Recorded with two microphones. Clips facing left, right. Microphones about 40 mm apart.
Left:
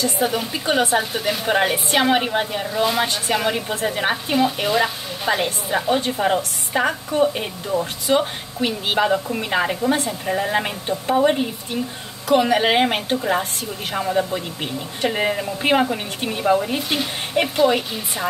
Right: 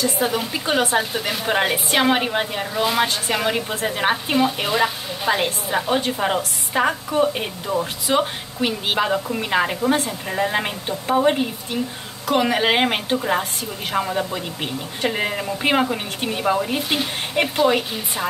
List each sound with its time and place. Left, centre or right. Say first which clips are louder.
0.0 s speech: even; centre
11.7 s a woman's voice: right 1 dB; right
12.3 s speech: left 2 dB; centre